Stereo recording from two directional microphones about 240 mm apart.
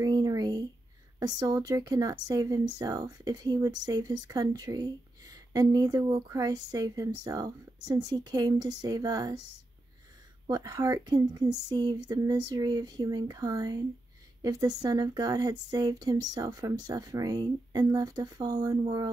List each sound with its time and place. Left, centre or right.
0.0 s a sound: centre
1.2 s speech: centre
10.4 s speech: centre